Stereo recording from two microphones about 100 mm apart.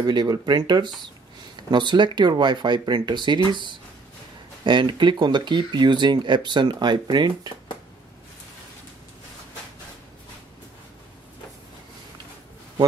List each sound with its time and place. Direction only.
0.0 s speech: 45° right (ahead or behind)